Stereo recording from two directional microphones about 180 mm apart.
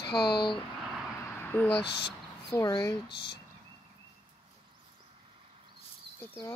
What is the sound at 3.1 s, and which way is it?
Speech, 65° left (ahead or behind).